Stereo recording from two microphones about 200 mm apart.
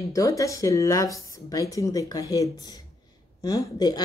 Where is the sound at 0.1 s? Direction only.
15° left (ahead or behind).